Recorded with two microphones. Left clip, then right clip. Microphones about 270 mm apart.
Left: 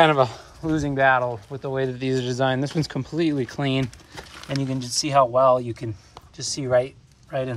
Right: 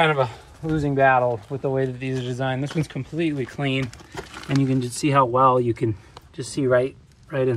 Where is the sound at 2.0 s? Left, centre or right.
Left.